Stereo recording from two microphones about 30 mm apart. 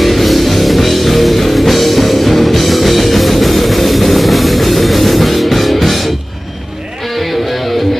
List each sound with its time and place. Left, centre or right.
0.0 s music: centre